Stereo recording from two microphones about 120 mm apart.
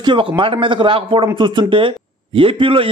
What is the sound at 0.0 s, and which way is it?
A man's voice, 40° right (ahead or behind).